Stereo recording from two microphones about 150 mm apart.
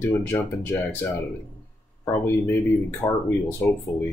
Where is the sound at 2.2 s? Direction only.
15° left (ahead or behind).